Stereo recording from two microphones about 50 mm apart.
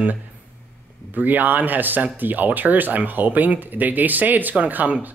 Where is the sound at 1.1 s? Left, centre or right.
Right.